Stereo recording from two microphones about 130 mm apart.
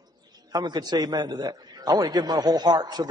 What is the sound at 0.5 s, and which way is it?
A man's voice, 30° right (ahead or behind).